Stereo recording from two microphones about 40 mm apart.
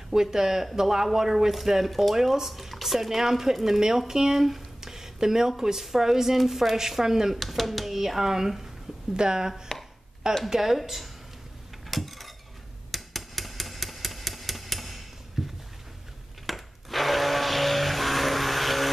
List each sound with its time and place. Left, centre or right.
0.1 s a woman's voice: centre
7.3 s a woman's voice: centre
11.9 s a sound: centre
16.4 s blender: centre